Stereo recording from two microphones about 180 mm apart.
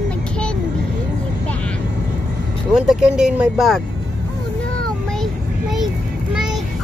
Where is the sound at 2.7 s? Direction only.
Centre (ahead or behind).